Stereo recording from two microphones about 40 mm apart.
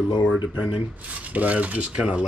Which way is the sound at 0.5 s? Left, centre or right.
Right.